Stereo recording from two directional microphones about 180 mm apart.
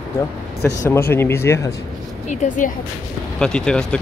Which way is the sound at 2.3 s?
45° left (ahead or behind).